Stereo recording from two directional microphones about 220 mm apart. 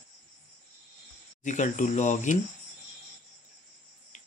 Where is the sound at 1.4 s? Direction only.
35° left (ahead or behind).